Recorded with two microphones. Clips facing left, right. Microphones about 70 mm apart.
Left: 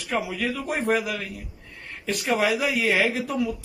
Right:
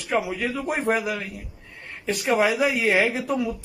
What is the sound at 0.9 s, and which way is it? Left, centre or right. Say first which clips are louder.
Speech: even; right.